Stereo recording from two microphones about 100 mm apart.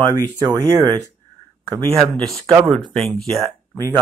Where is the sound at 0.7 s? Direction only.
35° right (ahead or behind).